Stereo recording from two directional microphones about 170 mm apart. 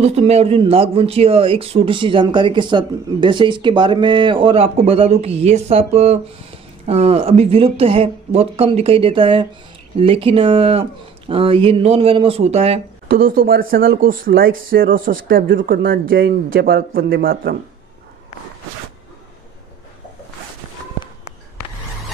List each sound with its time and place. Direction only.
0.0 s speech: 40° right (ahead or behind)
13.1 s speech: 60° right (ahead or behind)